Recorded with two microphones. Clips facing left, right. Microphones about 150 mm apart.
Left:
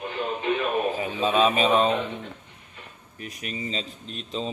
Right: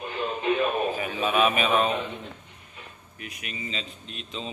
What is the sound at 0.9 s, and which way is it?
A man's voice, 25° left (ahead or behind).